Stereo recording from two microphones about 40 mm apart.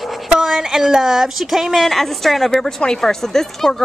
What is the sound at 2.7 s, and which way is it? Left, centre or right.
Speech, centre.